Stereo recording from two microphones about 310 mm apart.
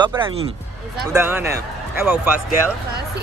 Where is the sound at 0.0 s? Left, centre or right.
Centre.